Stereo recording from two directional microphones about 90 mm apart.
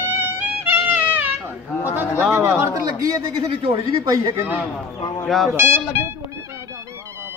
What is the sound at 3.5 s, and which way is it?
Speech, 90° right.